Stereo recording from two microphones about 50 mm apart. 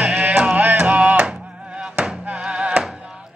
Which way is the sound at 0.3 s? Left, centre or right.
Centre.